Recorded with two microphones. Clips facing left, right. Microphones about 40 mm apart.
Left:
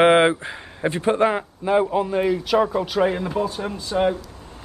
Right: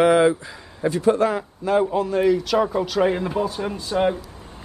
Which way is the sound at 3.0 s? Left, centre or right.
Centre.